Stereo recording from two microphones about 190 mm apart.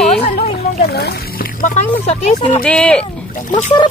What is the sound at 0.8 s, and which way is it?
Speech, 55° left (ahead or behind).